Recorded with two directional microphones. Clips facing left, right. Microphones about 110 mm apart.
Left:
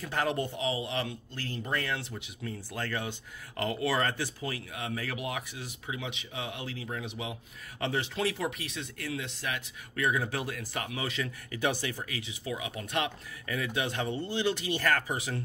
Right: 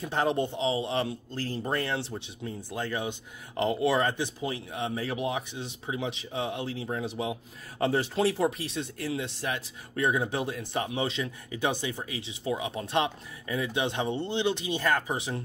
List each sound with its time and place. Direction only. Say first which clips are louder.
0.0 s speech: right 4 dB; 25° right (ahead or behind)